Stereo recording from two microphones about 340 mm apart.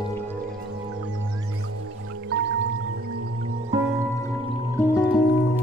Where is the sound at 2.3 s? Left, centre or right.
Right.